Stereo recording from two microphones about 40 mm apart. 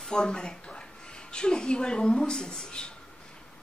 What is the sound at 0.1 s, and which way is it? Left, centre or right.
Speech, centre.